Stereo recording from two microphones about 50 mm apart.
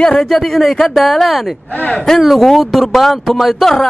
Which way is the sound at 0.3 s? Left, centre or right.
Centre.